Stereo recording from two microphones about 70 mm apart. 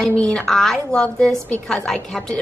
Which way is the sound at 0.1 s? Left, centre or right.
Centre.